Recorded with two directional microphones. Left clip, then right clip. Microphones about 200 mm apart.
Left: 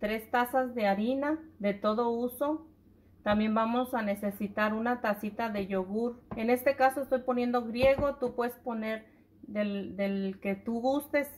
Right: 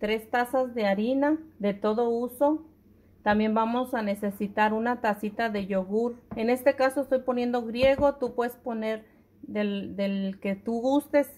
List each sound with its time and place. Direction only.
0.0 s speech: 50° right (ahead or behind)